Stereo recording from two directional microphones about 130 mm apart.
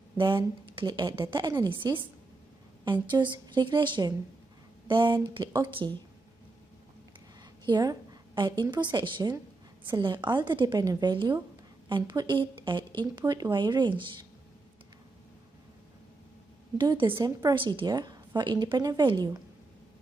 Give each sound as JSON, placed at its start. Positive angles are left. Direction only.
{"t": 0.2, "sound": "a woman's voice", "side_deg": -35}
{"t": 7.6, "sound": "a woman's voice", "side_deg": -35}
{"t": 16.7, "sound": "a woman's voice", "side_deg": -40}